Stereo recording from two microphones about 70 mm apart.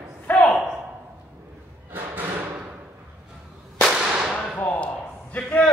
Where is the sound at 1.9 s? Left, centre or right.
Right.